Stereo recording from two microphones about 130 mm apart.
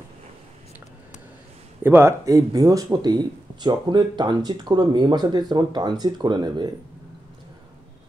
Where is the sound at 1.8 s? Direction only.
15° right (ahead or behind); by 6.7 s 35° right (ahead or behind).